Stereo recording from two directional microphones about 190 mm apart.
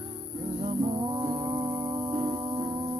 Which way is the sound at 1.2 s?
25° right (ahead or behind).